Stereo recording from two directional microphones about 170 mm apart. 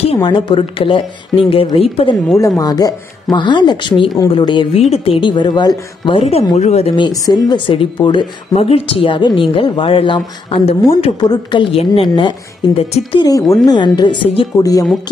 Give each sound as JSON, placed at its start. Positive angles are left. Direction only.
{"t": 0.0, "sound": "speech", "side_deg": 30}
{"t": 2.3, "sound": "speech", "side_deg": 20}
{"t": 7.0, "sound": "speech", "side_deg": 20}